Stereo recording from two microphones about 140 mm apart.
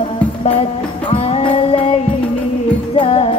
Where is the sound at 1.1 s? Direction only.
45° left (ahead or behind).